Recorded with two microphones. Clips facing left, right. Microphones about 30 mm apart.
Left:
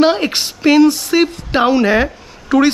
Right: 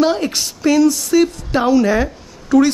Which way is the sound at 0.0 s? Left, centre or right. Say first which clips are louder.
Left 3 dB; left.